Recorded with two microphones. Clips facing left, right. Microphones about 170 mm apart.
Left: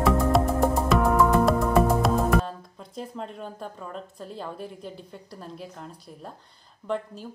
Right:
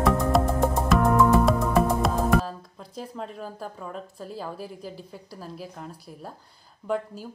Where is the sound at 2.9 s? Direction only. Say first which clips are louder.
Even; centre (ahead or behind).